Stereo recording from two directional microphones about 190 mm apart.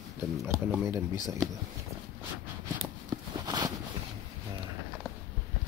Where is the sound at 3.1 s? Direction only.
20° right (ahead or behind).